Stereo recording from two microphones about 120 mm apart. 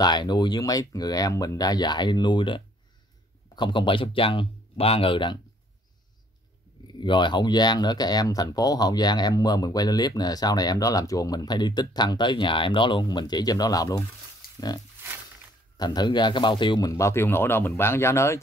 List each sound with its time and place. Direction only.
0.0 s speech: 40° left (ahead or behind)
7.0 s speech: 40° left (ahead or behind)
15.8 s speech: 35° left (ahead or behind)
16.9 s speech: 25° left (ahead or behind)